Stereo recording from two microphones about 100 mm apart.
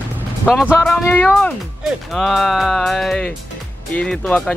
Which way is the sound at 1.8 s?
Centre (ahead or behind).